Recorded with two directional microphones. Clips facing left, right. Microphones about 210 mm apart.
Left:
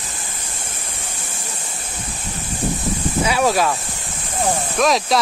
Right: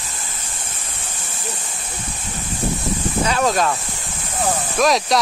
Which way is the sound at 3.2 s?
10° left (ahead or behind).